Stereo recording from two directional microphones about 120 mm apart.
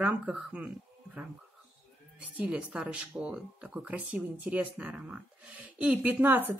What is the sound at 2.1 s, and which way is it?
A woman's voice, 10° right (ahead or behind).